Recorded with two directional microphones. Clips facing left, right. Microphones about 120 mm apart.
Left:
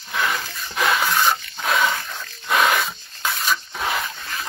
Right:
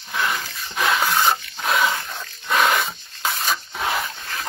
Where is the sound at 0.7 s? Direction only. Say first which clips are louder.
Even; centre (ahead or behind).